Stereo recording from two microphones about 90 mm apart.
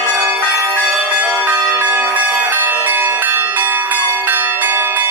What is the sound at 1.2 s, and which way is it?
Church bell, 20° right (ahead or behind).